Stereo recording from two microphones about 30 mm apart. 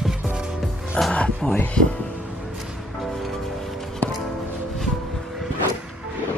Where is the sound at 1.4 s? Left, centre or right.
Centre.